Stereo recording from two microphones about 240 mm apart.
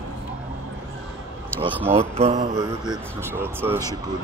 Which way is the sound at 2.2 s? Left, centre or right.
Right.